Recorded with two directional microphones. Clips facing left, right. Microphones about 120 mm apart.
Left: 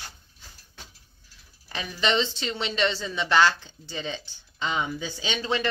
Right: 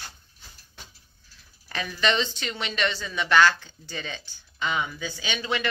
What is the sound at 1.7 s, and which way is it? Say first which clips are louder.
Speech: even; 20° left (ahead or behind).